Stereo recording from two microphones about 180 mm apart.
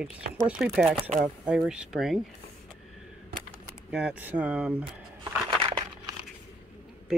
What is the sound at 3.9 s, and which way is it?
Speech, 5° right (ahead or behind).